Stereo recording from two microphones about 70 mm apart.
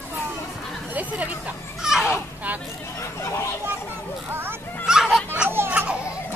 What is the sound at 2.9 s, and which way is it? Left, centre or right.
Speech, left.